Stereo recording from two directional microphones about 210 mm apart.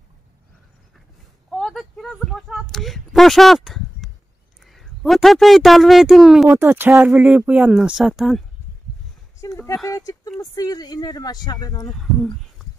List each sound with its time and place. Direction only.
1.5 s a sound: centre (ahead or behind)
4.6 s speech: centre (ahead or behind)
9.5 s a woman's voice: 5° left (ahead or behind)
11.9 s speech: centre (ahead or behind)